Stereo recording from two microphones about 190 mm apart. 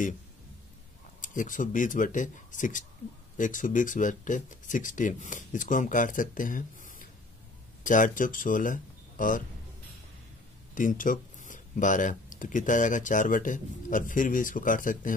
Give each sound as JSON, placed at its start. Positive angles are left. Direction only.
{"t": 1.2, "sound": "speech", "side_deg": 45}
{"t": 10.7, "sound": "speech", "side_deg": 45}